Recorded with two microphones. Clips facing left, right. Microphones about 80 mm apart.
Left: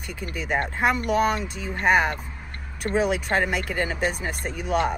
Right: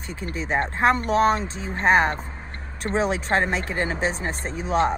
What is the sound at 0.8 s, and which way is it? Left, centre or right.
Speech, right.